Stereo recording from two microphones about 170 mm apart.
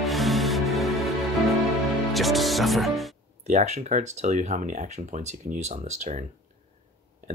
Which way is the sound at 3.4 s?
45° right (ahead or behind).